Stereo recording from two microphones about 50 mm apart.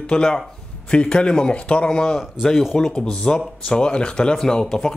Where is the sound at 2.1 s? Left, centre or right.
Centre.